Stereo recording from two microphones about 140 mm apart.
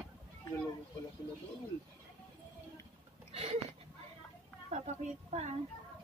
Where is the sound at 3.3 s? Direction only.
45° right (ahead or behind).